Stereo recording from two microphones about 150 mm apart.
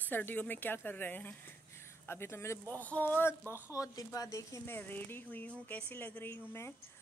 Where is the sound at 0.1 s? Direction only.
10° left (ahead or behind).